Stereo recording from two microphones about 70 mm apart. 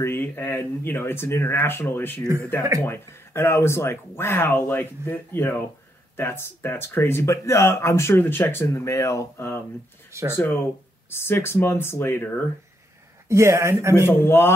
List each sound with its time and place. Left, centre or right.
0.0 s speech: left
10.3 s speech: left
13.3 s speech: right
14.2 s speech: left